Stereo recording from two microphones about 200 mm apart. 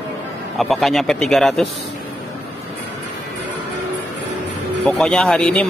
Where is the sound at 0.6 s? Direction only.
Centre (ahead or behind).